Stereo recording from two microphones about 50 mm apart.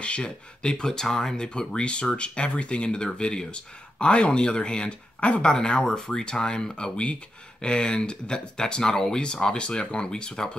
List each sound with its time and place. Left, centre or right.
0.0 s speech: left